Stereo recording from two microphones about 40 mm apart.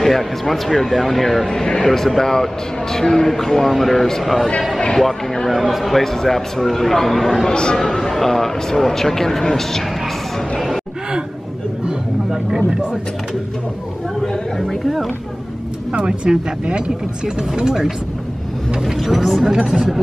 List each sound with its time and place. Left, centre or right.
0.0 s a man's voice: centre
5.5 s speech: centre
7.5 s a man's voice: centre
12.3 s speech: centre
14.2 s a sound: centre
15.9 s speech: right
18.9 s speech: centre
19.5 s speech: centre